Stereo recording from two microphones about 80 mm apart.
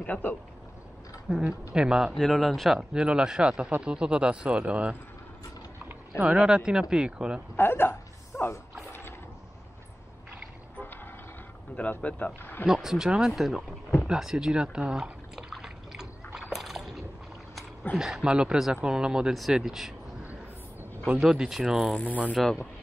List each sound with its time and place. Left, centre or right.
0.0 s a man's voice: centre
1.3 s speech: centre
2.1 s speech: centre
6.1 s speech: centre
7.5 s a sound: left
11.7 s speech: centre
12.6 s speech: centre
14.0 s pour: centre
16.3 s rowboat: centre
17.9 s speech: centre
21.2 s speech: centre
22.1 s speech: centre